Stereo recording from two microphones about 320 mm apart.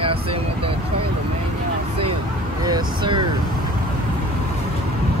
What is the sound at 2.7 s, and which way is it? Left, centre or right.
Speech, centre.